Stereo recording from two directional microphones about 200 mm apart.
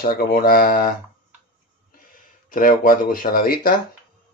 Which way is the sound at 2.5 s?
45° left (ahead or behind).